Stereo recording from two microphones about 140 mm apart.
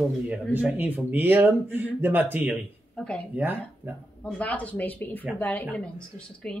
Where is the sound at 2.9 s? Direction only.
5° left (ahead or behind).